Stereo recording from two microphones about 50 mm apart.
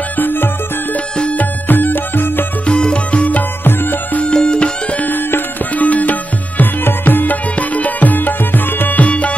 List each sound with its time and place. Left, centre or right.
0.2 s music: left
2.6 s music: left
5.0 s music: left